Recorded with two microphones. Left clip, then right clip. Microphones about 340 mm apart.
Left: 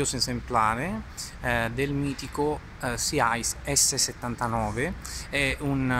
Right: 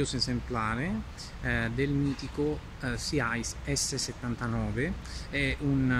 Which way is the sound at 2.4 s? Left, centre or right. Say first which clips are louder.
Left 4 dB; left.